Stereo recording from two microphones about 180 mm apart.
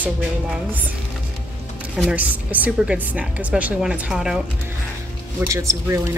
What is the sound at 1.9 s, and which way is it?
Speech, 5° right (ahead or behind).